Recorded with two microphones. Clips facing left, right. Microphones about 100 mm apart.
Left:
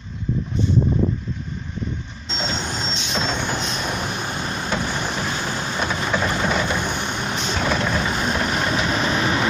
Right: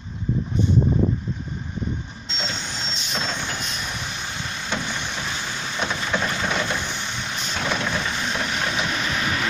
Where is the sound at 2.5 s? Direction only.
50° left (ahead or behind).